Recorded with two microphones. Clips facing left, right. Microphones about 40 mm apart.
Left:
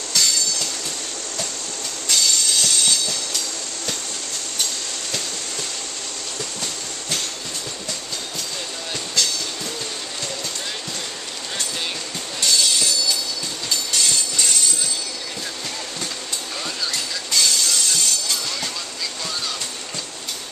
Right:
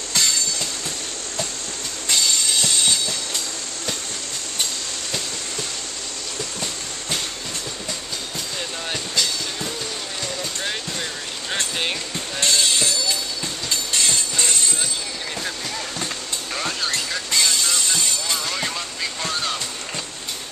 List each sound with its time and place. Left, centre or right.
0.1 s train: right
2.0 s train: right
12.4 s music: right
13.7 s train: right
16.6 s vehicle: right
17.3 s vehicle: right